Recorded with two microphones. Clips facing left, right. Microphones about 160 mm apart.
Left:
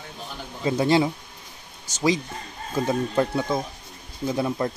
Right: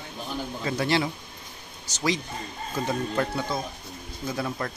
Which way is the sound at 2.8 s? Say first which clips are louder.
Left 4 dB; 20° left (ahead or behind).